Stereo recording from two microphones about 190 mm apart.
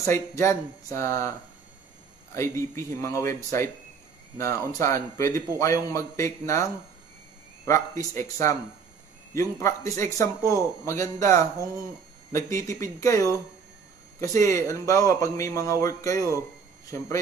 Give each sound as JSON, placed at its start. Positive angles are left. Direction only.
{"t": 0.0, "sound": "a man's voice", "side_deg": 15}
{"t": 2.3, "sound": "a man's voice", "side_deg": 15}